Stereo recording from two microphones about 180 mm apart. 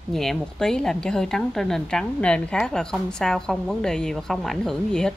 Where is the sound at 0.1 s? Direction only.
Centre (ahead or behind).